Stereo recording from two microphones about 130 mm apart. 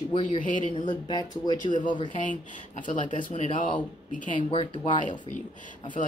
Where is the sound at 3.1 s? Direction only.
70° left (ahead or behind).